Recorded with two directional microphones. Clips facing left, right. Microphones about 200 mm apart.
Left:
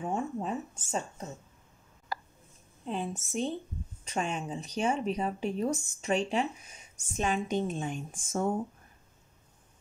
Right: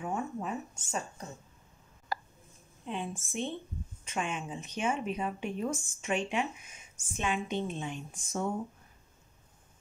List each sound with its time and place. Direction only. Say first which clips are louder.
0.0 s speech: left 2 dB; 30° left (ahead or behind)
2.8 s a woman's voice: left 3 dB; 40° left (ahead or behind)